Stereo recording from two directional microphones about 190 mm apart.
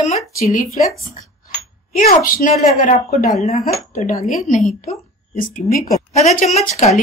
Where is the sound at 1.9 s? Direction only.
45° left (ahead or behind).